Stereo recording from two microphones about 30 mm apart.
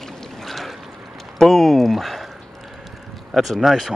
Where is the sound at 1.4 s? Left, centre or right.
Centre.